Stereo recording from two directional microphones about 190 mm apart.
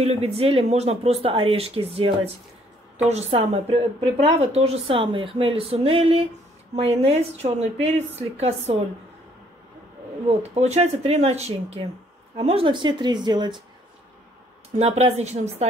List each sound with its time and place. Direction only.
0.0 s a woman's voice: 30° right (ahead or behind)
10.2 s a woman's voice: 35° right (ahead or behind)
14.8 s a woman's voice: 35° right (ahead or behind)